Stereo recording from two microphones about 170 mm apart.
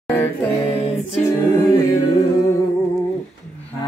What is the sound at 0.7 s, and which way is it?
A capella, 40° left (ahead or behind).